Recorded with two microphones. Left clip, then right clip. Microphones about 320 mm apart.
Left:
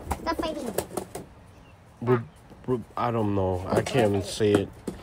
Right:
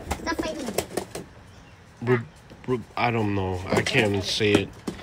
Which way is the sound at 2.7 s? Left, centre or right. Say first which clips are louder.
Right 2 dB; centre.